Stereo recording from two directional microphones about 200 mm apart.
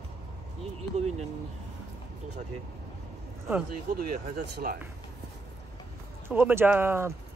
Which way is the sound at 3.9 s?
50° right (ahead or behind).